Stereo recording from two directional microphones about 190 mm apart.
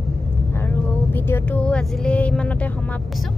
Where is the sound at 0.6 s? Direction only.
10° left (ahead or behind).